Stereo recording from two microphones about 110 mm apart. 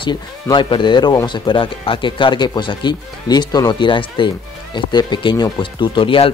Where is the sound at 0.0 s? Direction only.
45° left (ahead or behind).